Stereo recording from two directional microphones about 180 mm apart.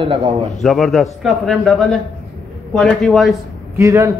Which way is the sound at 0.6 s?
Centre (ahead or behind).